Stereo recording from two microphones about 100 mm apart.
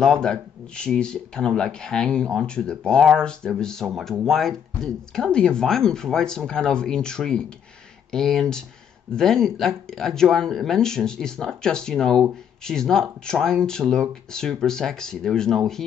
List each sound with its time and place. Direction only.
0.0 s speech: 5° left (ahead or behind)